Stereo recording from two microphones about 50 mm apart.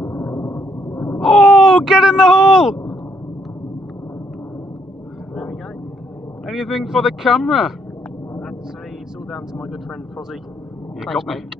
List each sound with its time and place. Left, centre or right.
0.0 s a sound: left
1.2 s speech: centre
5.3 s vehicle: centre
6.4 s speech: centre
9.6 s speech: centre